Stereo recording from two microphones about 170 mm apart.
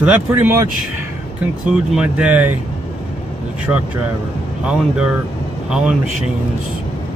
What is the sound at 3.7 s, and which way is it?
Speech, 10° right (ahead or behind).